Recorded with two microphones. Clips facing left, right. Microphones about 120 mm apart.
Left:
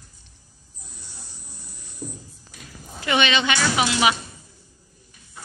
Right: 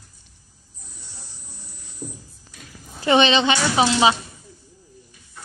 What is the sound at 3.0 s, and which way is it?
A woman's voice, 30° right (ahead or behind).